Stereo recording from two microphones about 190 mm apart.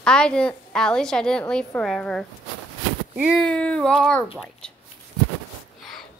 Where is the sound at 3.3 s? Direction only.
5° left (ahead or behind).